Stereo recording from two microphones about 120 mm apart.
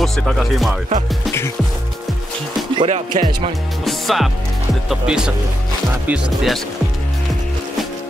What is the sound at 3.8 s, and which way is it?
Speech, centre (ahead or behind).